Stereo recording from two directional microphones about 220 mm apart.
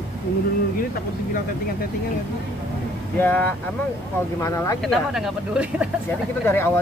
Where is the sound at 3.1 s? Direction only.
10° left (ahead or behind).